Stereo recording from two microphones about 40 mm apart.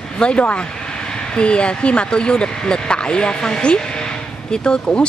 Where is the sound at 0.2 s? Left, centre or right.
Left.